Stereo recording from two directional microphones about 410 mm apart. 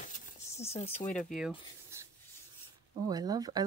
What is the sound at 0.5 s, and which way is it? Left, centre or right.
Speech, centre.